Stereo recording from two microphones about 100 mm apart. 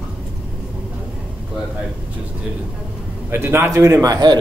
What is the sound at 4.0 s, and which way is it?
Speech, 40° right (ahead or behind).